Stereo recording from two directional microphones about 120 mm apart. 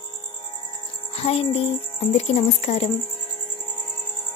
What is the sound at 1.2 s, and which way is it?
Speech, 55° left (ahead or behind).